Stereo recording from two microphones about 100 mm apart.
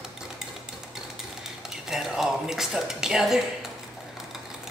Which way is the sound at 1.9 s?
5° right (ahead or behind).